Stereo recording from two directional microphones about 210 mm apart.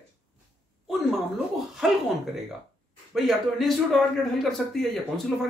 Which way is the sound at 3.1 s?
Centre (ahead or behind).